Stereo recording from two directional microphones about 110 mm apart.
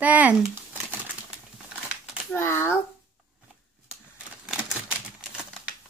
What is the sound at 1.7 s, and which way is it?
Crumpling, 10° right (ahead or behind).